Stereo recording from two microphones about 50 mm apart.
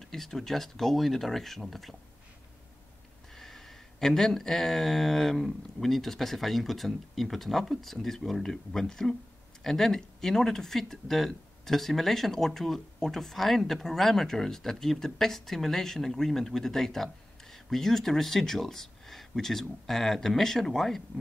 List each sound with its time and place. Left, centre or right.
0.0 s speech: centre
3.3 s speech: centre